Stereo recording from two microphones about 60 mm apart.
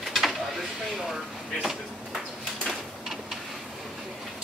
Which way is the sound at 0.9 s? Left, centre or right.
Centre.